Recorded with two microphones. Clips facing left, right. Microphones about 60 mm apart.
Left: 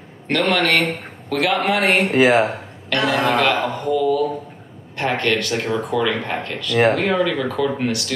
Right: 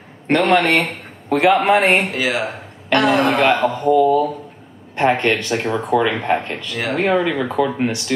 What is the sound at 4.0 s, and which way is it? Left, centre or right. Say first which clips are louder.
Speech: right 2 dB; right.